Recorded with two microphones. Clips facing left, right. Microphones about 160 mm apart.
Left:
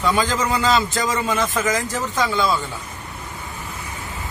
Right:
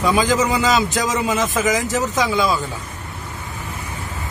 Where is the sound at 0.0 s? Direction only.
15° right (ahead or behind).